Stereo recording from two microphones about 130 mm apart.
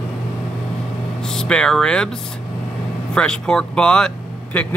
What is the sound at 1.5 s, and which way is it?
Speech, 5° left (ahead or behind).